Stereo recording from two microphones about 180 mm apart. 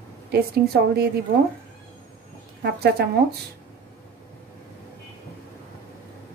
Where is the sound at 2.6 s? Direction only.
65° right (ahead or behind).